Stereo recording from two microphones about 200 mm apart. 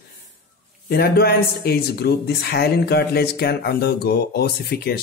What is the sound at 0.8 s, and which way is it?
Speech, 50° left (ahead or behind).